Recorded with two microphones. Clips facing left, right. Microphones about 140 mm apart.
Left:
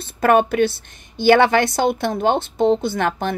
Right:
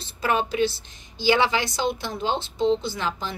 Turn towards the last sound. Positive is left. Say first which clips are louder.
# left 8 dB
turn(degrees=60)  # may be behind; listen again after turning